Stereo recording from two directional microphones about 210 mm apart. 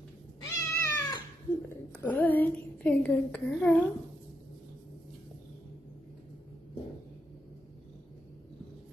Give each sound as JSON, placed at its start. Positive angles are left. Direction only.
{"t": 0.4, "sound": "cat", "side_deg": 20}
{"t": 2.0, "sound": "speech", "side_deg": 10}